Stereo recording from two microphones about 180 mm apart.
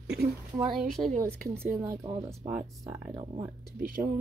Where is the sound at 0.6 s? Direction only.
Centre (ahead or behind).